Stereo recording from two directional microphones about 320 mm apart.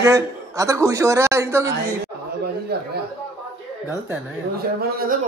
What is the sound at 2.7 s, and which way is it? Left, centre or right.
Speech, right.